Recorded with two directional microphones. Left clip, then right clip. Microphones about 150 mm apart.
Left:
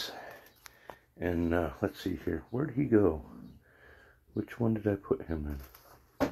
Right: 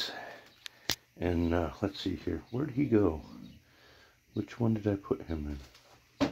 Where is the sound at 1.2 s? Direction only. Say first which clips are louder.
Even; 20° right (ahead or behind).